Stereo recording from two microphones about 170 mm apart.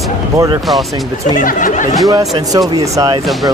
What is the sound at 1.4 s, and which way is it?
Speech, 50° left (ahead or behind).